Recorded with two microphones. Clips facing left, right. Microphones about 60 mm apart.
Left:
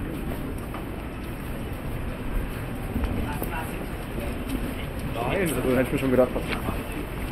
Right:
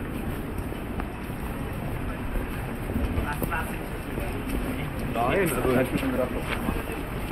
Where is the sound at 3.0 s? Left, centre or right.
Right.